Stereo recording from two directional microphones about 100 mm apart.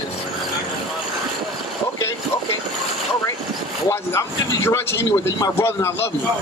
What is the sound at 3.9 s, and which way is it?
A man's voice, 25° left (ahead or behind).